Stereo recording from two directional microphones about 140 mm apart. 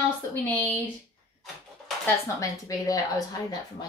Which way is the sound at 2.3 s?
25° left (ahead or behind).